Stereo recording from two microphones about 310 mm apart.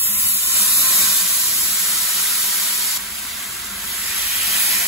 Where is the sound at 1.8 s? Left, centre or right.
Centre.